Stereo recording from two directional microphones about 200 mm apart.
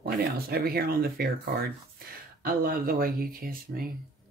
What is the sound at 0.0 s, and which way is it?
Speech, 50° right (ahead or behind).